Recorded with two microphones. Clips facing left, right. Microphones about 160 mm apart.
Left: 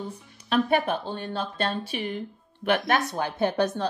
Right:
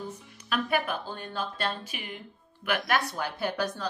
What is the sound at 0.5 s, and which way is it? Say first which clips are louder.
A woman's voice: left 6 dB; 30° left (ahead or behind).